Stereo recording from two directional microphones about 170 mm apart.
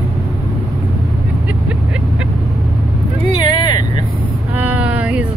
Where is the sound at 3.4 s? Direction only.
25° left (ahead or behind).